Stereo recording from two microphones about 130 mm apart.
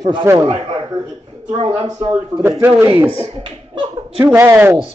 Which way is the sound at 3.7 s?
35° right (ahead or behind).